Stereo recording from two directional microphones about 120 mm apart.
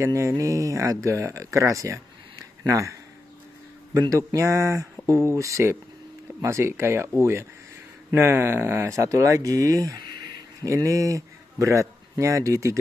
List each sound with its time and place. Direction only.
0.0 s speech: 25° right (ahead or behind)
4.3 s speech: 25° right (ahead or behind)